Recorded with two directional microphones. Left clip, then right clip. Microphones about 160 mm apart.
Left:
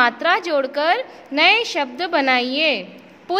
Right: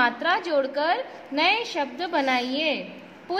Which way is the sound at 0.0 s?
35° left (ahead or behind).